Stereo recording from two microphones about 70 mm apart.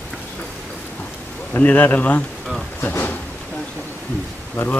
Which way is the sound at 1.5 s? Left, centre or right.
Left.